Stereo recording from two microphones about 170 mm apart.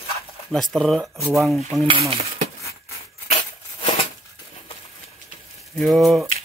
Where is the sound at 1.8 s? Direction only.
35° right (ahead or behind).